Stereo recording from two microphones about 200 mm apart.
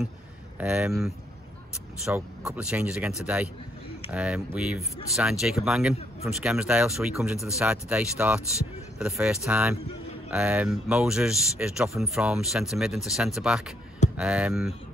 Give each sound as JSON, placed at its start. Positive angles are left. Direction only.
{"t": 0.6, "sound": "speech", "side_deg": -5}